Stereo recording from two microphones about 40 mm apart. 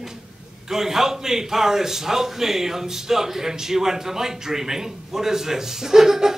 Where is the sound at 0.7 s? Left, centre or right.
Centre.